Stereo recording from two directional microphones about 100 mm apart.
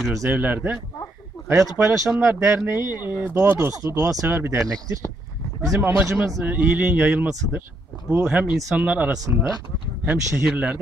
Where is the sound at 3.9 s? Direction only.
35° right (ahead or behind).